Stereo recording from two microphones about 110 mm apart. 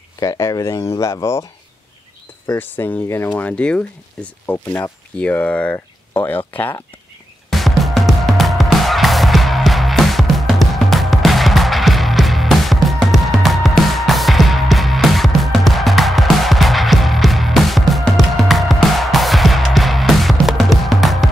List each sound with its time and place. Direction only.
0.2 s speech: 30° left (ahead or behind)
2.4 s speech: 20° left (ahead or behind)
7.4 s music: centre (ahead or behind)